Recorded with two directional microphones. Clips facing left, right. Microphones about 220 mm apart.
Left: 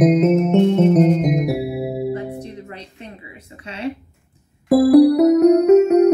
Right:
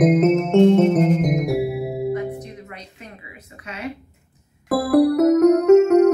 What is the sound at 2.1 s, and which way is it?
Music, 30° left (ahead or behind).